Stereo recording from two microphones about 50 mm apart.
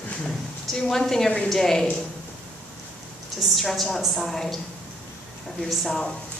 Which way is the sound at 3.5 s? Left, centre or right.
Centre.